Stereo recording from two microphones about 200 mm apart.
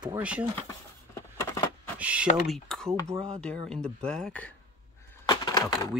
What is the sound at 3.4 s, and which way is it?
Speech, 5° left (ahead or behind).